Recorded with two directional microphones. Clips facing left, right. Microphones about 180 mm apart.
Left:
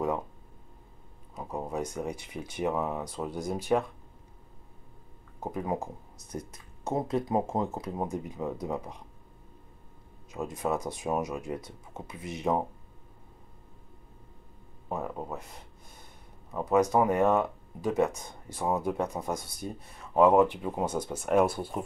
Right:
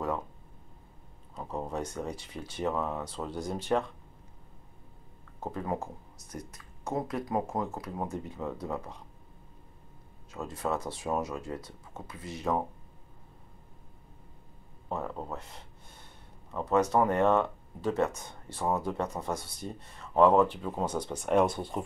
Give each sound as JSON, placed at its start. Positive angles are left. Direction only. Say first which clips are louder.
{"t": 1.3, "sound": "speech", "louder": "left 1 dB", "side_deg": 10}
{"t": 5.4, "sound": "speech", "louder": "left 2 dB", "side_deg": 15}
{"t": 6.3, "sound": "speech", "louder": "left 4 dB", "side_deg": 25}
{"t": 10.3, "sound": "speech", "louder": "left 2 dB", "side_deg": 15}
{"t": 14.9, "sound": "a sound", "louder": "left 1 dB", "side_deg": 10}
{"t": 16.5, "sound": "speech", "louder": "left 2 dB", "side_deg": 10}